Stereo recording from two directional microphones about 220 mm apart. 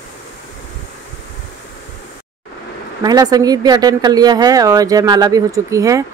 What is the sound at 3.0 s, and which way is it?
Speech, 15° right (ahead or behind).